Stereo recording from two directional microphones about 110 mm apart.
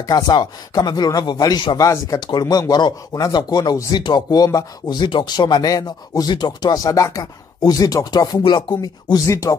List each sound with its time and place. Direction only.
0.0 s speech: 40° left (ahead or behind)